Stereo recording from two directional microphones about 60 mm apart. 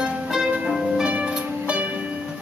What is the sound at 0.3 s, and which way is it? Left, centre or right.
Music, centre.